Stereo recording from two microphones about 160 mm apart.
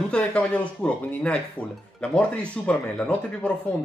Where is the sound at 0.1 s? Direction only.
10° left (ahead or behind).